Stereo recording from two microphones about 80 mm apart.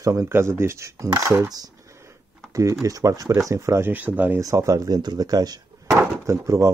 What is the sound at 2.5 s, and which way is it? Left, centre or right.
Speech, right.